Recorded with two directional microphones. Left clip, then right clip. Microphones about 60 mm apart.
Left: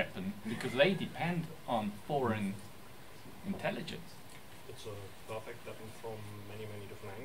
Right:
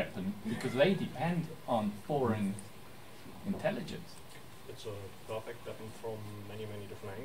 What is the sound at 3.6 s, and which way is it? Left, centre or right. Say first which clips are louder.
Speech: right 2 dB; left.